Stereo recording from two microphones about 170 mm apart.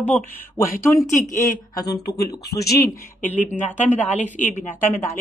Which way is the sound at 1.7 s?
20° left (ahead or behind).